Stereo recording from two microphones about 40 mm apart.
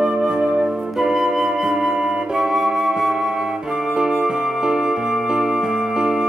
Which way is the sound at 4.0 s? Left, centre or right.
Centre.